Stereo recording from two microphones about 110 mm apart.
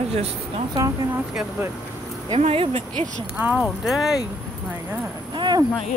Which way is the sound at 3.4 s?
15° right (ahead or behind).